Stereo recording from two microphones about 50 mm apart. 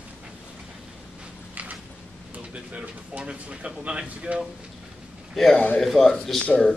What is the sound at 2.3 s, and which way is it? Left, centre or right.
Speech, right.